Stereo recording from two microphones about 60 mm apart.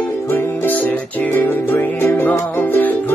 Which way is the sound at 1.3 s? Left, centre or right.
Left.